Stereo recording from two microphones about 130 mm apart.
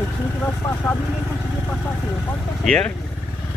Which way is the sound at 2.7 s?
5° left (ahead or behind).